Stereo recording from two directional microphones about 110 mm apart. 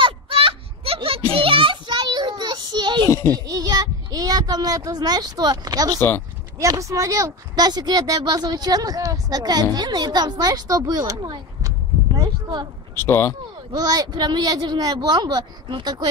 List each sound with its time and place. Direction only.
0.0 s a sound: 55° right (ahead or behind)
3.3 s a child's voice: 35° right (ahead or behind)
5.9 s speech: 20° left (ahead or behind)
6.6 s speech: 30° right (ahead or behind)
12.9 s speech: 20° left (ahead or behind)
13.7 s speech: 35° right (ahead or behind)